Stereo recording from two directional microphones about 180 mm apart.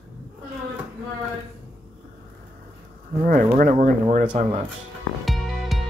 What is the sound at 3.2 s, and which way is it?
Speech, 50° right (ahead or behind).